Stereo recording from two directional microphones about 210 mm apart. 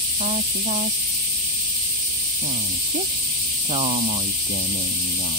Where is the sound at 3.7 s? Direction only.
30° right (ahead or behind).